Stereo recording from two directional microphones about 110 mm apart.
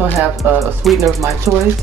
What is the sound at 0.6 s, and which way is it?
Speech, centre (ahead or behind).